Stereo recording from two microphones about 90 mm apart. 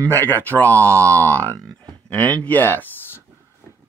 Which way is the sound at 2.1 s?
20° left (ahead or behind).